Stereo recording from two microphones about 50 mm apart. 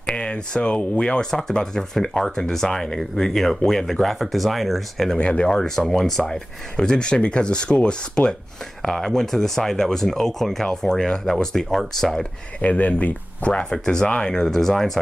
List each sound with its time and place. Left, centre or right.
0.0 s speech: centre
8.8 s speech: centre
12.6 s speech: left; by 15.0 s centre